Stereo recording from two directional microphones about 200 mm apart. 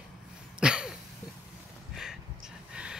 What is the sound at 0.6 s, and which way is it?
Cough, 5° right (ahead or behind).